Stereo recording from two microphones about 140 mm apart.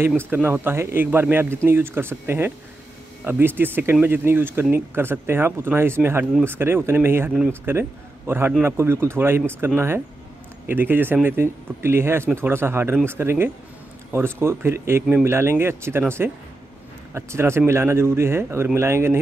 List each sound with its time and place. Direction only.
0.3 s speech: 15° right (ahead or behind)